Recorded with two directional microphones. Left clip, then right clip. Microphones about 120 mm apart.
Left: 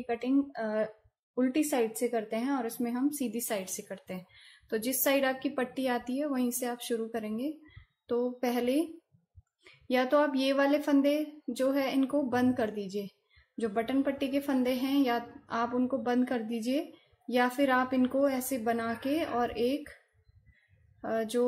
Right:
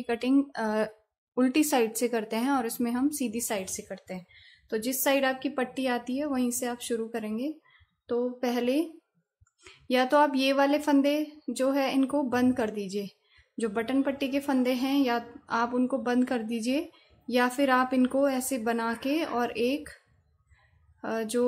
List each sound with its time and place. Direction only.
0.0 s a woman's voice: 35° right (ahead or behind)
3.7 s speech: centre (ahead or behind)
9.7 s a woman's voice: 20° right (ahead or behind)
21.0 s a woman's voice: 20° right (ahead or behind)